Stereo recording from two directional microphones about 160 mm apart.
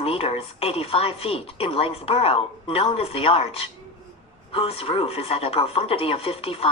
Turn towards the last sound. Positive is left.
turn(degrees=35)  # may be behind; listen again after turning